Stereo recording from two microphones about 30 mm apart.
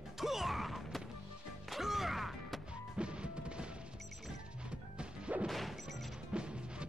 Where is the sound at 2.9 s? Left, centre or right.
Right.